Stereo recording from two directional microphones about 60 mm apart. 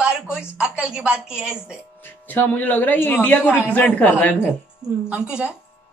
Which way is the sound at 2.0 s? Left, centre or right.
Left.